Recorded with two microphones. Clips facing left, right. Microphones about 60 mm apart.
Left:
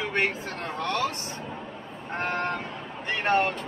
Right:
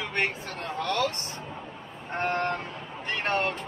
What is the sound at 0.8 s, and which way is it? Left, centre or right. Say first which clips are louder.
Speech: even; left.